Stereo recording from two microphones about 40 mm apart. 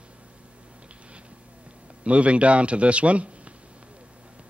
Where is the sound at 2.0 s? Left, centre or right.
Right.